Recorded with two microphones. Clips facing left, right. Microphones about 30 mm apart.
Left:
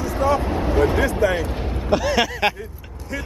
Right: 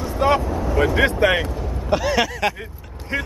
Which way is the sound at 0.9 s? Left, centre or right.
Right.